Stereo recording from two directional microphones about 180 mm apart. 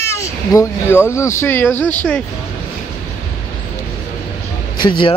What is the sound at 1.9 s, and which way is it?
Speech, 10° left (ahead or behind).